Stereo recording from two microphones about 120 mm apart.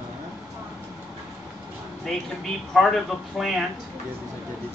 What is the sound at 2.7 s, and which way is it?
Speech, centre (ahead or behind).